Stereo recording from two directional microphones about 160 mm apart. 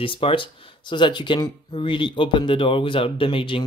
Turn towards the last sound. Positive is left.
turn(degrees=30)  # may be behind; listen again after turning